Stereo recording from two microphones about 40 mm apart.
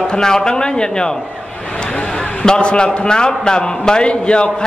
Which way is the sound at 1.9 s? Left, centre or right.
Left.